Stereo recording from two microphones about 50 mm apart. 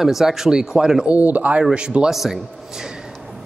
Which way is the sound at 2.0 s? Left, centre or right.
Centre.